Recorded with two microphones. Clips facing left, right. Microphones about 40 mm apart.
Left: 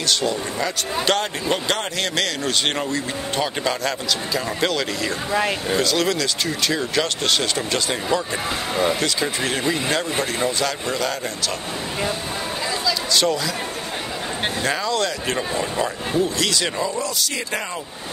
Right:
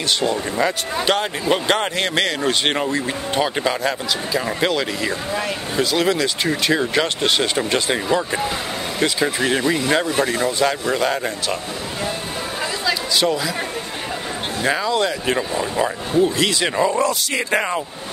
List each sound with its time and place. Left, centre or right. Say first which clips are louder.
0.1 s speech: right 2 dB; right
1.0 s speech: right 2 dB; centre
1.7 s speech: right 4 dB; right
13.1 s speech: even; centre
14.6 s speech: right 4 dB; centre
16.8 s speech: right 6 dB; right